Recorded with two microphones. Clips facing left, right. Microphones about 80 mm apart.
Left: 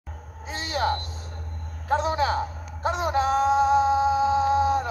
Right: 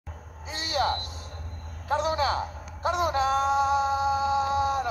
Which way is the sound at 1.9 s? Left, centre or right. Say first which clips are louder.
Left 2 dB; left.